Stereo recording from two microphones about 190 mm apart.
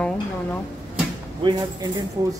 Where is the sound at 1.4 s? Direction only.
25° right (ahead or behind).